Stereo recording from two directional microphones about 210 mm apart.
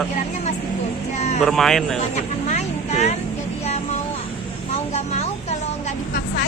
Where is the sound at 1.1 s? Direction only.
30° left (ahead or behind).